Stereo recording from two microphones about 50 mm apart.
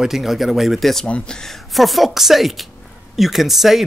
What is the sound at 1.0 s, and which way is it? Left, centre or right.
Speech, left.